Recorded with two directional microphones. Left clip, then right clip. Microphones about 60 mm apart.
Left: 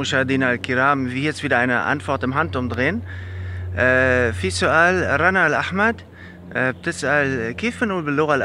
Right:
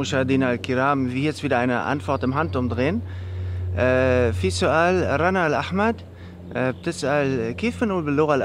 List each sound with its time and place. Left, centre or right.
0.0 s speech: centre